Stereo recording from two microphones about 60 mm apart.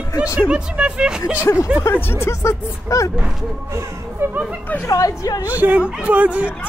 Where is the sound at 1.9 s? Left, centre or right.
Left.